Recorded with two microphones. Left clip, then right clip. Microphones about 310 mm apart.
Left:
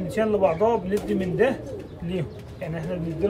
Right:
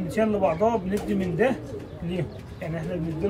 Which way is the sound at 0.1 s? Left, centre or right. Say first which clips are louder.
Left 2 dB; centre.